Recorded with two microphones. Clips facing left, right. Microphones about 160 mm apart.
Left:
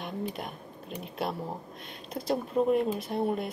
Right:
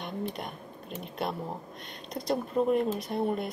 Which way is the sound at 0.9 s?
Centre (ahead or behind).